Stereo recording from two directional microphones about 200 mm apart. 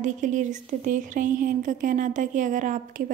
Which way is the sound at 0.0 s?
40° right (ahead or behind).